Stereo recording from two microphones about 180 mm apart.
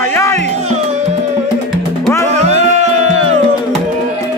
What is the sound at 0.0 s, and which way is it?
Music, 15° left (ahead or behind).